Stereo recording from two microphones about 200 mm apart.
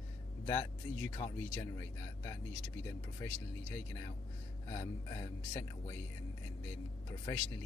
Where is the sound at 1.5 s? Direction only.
15° left (ahead or behind).